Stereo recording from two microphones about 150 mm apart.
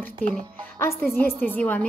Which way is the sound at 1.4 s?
15° left (ahead or behind).